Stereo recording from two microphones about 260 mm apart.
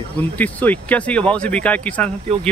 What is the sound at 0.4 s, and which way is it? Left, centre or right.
Speech, centre.